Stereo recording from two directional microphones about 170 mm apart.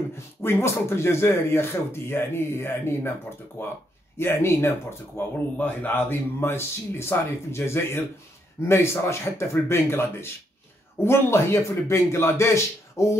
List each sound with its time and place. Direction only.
0.1 s speech: 15° left (ahead or behind)